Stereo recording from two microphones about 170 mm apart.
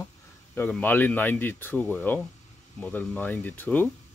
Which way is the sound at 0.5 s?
10° left (ahead or behind).